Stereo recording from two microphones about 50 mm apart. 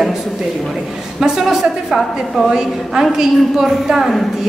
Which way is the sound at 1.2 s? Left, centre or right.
Centre.